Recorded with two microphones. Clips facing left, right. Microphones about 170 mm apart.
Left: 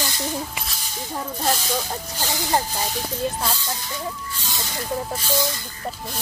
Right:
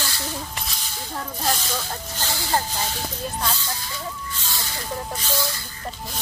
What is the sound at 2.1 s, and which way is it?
Speech, 15° left (ahead or behind).